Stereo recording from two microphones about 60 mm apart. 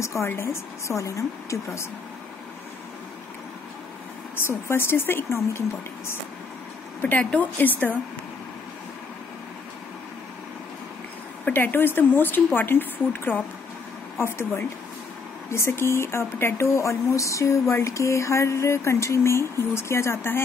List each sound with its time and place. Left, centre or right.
0.0 s a woman's voice: left
4.5 s speech: left
7.0 s a woman's voice: left
11.4 s speech: left